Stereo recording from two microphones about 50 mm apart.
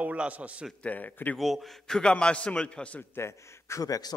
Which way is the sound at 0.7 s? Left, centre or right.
Left.